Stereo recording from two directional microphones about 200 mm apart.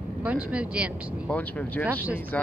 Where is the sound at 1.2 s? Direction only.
10° left (ahead or behind).